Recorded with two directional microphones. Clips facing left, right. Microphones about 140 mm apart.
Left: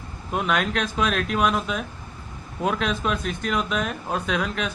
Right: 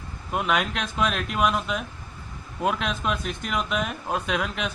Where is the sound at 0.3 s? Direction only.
5° right (ahead or behind).